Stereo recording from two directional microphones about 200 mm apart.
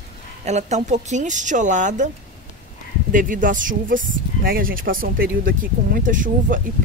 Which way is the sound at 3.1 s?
40° right (ahead or behind).